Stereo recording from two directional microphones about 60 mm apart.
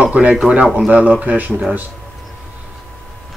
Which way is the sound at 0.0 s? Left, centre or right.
Centre.